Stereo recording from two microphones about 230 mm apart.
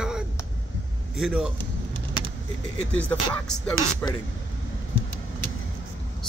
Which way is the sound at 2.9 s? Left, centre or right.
Centre.